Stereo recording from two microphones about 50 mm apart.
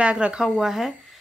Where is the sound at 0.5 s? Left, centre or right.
Centre.